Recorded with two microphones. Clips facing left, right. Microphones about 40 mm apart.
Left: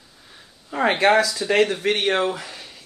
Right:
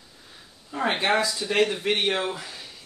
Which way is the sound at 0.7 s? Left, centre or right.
Left.